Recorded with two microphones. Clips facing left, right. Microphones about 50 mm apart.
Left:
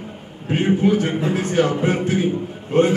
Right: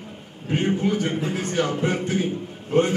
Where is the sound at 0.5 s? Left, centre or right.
Centre.